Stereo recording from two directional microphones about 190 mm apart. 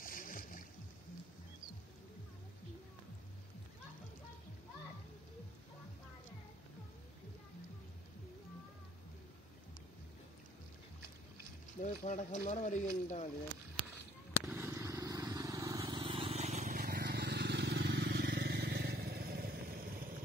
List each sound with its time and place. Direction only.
0.0 s a sound: 45° left (ahead or behind)
11.8 s speech: 40° left (ahead or behind)
14.5 s vehicle: 15° right (ahead or behind); by 16.8 s 40° right (ahead or behind)
16.8 s vehicle: 55° right (ahead or behind)